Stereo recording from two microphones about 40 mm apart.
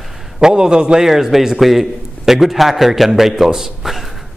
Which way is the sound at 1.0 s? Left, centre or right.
Centre.